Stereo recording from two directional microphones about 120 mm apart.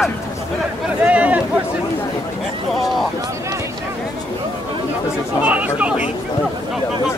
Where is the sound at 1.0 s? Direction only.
10° right (ahead or behind).